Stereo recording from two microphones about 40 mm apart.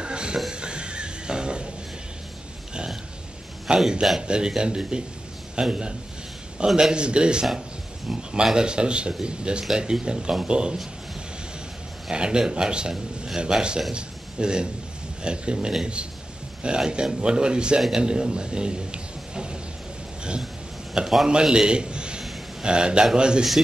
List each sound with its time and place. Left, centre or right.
0.0 s music: right
3.6 s a man's voice: centre
4.3 s speech: centre
12.1 s a man's voice: right
20.9 s a sound: centre
21.3 s a man's voice: centre